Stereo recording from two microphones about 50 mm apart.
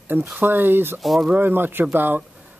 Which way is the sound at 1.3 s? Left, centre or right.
Right.